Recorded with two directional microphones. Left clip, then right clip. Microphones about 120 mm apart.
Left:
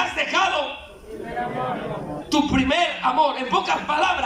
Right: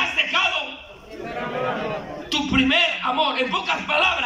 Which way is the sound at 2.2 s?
45° left (ahead or behind).